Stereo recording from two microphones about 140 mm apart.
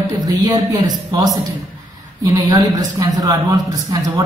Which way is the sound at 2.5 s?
25° right (ahead or behind).